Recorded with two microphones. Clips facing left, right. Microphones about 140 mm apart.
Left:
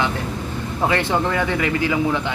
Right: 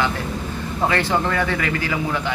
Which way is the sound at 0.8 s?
20° left (ahead or behind).